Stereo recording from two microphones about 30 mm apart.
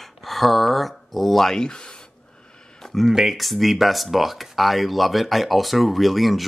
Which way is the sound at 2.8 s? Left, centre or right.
Centre.